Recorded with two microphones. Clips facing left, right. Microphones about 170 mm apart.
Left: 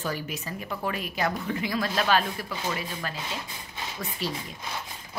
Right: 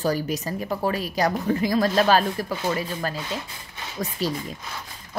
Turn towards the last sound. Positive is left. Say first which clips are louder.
# right 6 dB
turn(degrees=-40)  # may be behind; listen again after turning